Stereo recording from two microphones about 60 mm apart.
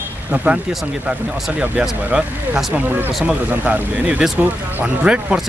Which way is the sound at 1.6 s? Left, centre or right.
Centre.